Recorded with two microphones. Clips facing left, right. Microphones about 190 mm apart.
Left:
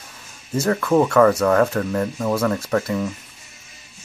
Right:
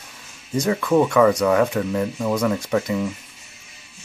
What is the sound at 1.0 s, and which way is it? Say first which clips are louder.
Speech: left 2 dB; 15° right (ahead or behind).